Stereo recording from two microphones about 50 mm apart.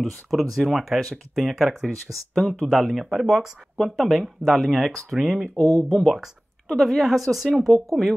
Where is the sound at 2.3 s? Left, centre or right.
Centre.